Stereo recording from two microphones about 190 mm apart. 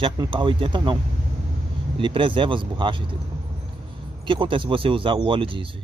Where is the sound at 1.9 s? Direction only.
25° right (ahead or behind).